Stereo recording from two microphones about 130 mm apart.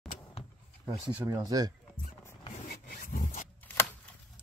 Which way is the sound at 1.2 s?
30° right (ahead or behind).